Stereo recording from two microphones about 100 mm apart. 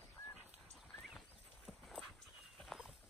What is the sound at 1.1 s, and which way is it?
Horse, centre (ahead or behind).